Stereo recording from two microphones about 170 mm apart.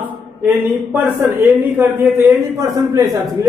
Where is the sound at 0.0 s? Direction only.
10° right (ahead or behind).